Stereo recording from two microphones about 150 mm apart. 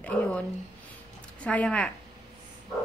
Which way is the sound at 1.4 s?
5° left (ahead or behind).